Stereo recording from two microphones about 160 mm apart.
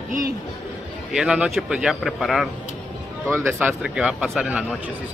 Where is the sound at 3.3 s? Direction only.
15° right (ahead or behind).